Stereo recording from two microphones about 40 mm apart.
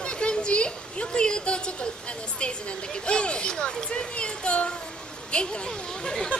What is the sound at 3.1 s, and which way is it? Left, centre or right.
A child's voice, left.